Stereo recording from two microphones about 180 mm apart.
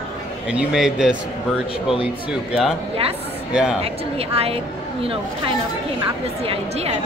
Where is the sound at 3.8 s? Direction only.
35° right (ahead or behind).